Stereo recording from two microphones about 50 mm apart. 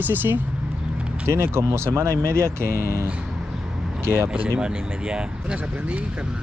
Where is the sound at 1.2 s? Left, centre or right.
Right.